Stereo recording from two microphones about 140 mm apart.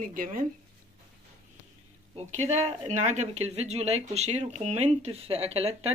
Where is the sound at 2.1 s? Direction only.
50° right (ahead or behind).